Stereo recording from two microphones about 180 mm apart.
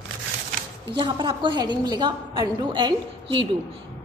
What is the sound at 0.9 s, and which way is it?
A woman's voice, 25° right (ahead or behind).